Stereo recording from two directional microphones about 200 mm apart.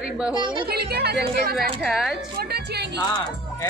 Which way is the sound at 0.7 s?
50° right (ahead or behind).